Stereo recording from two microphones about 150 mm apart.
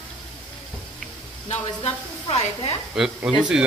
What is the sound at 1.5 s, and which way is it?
A woman's voice, 45° left (ahead or behind).